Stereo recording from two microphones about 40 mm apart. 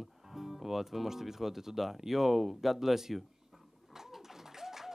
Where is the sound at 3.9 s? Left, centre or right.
Centre.